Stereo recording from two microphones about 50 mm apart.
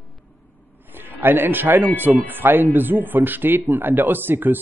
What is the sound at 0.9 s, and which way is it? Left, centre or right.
Speech, right.